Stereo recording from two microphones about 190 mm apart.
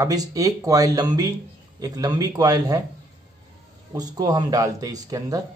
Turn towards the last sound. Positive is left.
turn(degrees=-20)  # may be behind; listen again after turning